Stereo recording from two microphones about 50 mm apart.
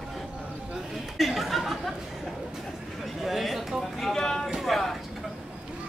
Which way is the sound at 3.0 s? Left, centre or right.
Centre.